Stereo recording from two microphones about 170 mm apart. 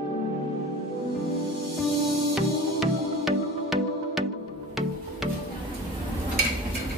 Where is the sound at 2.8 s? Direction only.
Centre (ahead or behind).